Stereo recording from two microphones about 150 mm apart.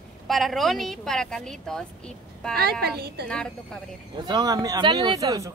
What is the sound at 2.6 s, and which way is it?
Speech, 90° right.